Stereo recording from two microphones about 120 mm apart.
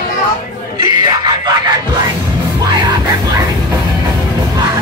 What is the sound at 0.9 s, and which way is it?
Screaming, 35° right (ahead or behind).